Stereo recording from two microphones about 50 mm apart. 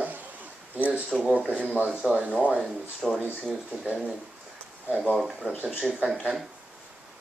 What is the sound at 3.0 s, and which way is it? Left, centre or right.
Speech, centre.